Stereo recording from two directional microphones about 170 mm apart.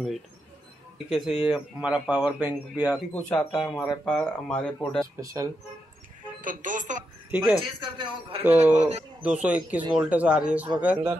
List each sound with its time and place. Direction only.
1.1 s speech: 5° right (ahead or behind)
3.2 s speech: 5° left (ahead or behind)
5.2 s a man's voice: 20° right (ahead or behind)
6.4 s speech: 50° right (ahead or behind)
7.2 s a man's voice: 5° right (ahead or behind)
7.8 s a man's voice: 25° right (ahead or behind)
8.5 s speech: 10° right (ahead or behind)
8.7 s speech: 40° right (ahead or behind)
9.2 s speech: 10° right (ahead or behind)